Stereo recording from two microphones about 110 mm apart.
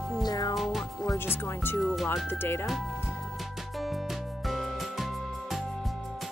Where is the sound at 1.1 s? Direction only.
20° left (ahead or behind).